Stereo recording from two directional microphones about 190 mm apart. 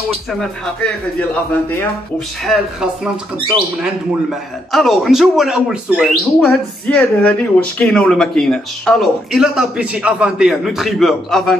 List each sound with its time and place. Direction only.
0.3 s speech: 5° left (ahead or behind)
3.3 s speech: 25° right (ahead or behind)
3.8 s speech: centre (ahead or behind)